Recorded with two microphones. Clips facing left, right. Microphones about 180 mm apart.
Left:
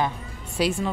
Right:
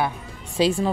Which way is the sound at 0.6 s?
30° right (ahead or behind).